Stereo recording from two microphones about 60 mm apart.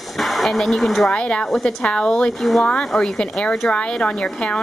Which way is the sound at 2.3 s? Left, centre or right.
Centre.